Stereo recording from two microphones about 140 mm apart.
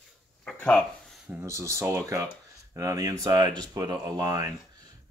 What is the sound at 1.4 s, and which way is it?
Speech, 20° right (ahead or behind).